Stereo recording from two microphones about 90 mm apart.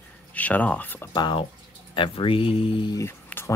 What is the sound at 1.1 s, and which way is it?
Speech, 60° left (ahead or behind).